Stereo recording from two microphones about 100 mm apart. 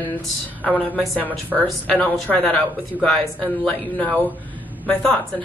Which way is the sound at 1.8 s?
10° left (ahead or behind).